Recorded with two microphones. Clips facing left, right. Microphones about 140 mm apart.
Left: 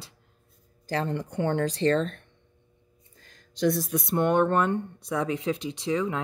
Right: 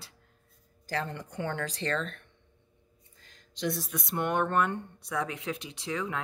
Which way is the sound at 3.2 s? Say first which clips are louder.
Left 8 dB; 45° left (ahead or behind).